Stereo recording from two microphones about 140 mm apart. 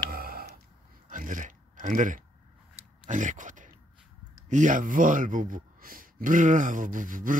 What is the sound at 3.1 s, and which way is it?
Speech, 65° right (ahead or behind).